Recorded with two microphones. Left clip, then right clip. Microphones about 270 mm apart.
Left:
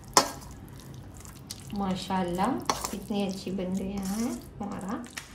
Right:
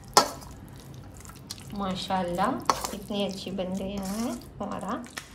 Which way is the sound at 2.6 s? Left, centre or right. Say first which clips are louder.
Right 3 dB; centre.